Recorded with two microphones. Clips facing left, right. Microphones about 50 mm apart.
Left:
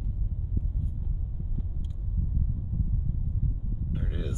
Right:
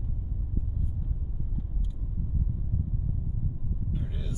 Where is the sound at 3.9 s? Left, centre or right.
Left.